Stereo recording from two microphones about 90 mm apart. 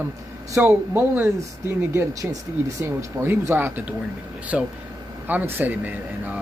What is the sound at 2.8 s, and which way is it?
Speech, 25° right (ahead or behind).